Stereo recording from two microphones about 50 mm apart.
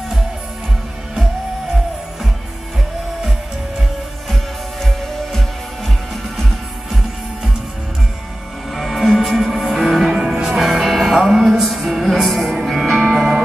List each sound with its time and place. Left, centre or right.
8.7 s music: centre